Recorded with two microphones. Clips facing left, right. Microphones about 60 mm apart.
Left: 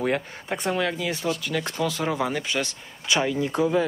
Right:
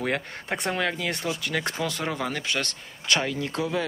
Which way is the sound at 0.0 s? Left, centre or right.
Centre.